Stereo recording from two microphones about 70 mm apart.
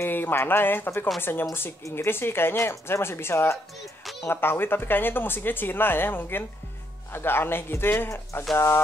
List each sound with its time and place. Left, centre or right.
0.0 s speech: left